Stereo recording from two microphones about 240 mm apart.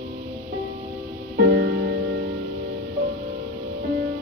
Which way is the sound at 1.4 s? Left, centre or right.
Right.